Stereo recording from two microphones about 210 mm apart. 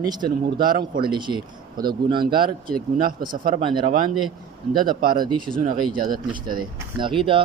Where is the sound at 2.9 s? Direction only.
40° right (ahead or behind).